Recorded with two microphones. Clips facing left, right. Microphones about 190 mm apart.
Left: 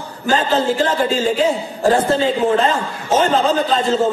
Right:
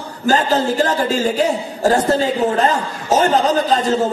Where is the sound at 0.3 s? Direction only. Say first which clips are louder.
Right 1 dB; 40° right (ahead or behind).